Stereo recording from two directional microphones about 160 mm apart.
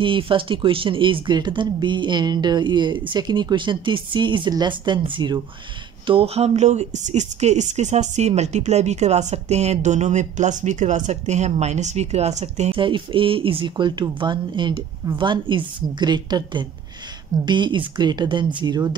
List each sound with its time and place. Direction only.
0.0 s speech: 30° right (ahead or behind)
12.7 s speech: 30° right (ahead or behind)